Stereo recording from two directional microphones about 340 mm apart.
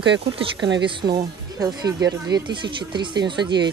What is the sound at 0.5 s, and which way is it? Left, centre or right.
Speech, right.